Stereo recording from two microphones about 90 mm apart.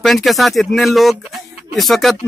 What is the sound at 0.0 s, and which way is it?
Speech, centre (ahead or behind).